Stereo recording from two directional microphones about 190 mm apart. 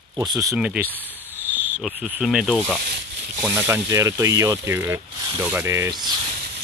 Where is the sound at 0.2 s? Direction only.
20° right (ahead or behind).